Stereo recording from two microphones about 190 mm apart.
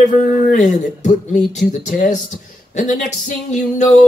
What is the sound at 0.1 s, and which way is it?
A woman's voice, 40° left (ahead or behind).